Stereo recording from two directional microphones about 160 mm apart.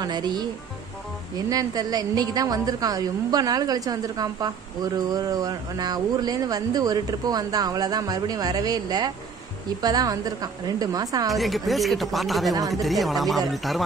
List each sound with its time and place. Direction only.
0.0 s speech: 25° right (ahead or behind)
1.5 s speech: 25° right (ahead or behind)
11.3 s speech: centre (ahead or behind)
12.5 s speech: 20° right (ahead or behind)
12.8 s speech: centre (ahead or behind)